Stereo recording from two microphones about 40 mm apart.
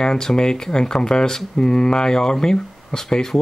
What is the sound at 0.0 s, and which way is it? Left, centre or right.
Speech, centre.